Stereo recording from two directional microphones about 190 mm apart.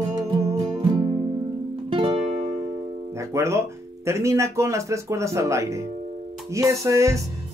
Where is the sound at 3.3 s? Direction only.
15° right (ahead or behind).